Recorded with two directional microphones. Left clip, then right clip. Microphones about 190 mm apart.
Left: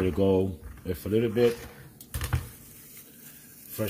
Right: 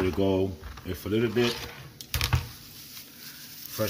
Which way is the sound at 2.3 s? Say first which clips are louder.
Right 5 dB; 5° right (ahead or behind).